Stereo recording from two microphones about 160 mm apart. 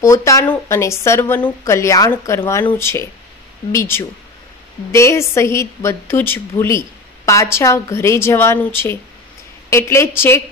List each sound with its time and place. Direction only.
0.0 s a woman's voice: 20° left (ahead or behind)